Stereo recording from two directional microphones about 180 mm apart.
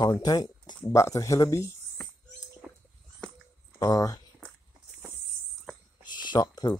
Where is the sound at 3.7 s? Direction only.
20° left (ahead or behind).